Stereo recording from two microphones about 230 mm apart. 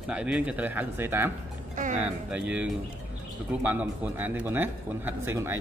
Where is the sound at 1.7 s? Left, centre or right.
Right.